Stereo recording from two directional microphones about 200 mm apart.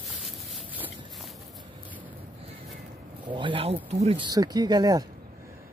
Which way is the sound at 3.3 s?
25° right (ahead or behind).